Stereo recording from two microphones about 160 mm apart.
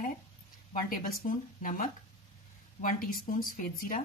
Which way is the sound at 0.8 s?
60° left (ahead or behind).